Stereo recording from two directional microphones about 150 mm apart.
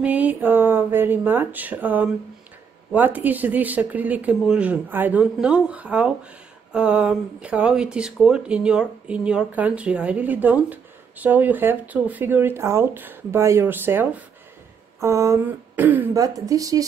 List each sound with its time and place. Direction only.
0.0 s speech: 10° right (ahead or behind)
16.2 s speech: 25° right (ahead or behind)